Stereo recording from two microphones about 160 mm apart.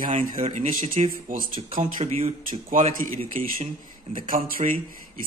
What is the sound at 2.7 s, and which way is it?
Speech, 55° right (ahead or behind).